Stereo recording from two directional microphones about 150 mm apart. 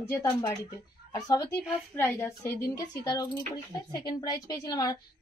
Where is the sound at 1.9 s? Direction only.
10° left (ahead or behind).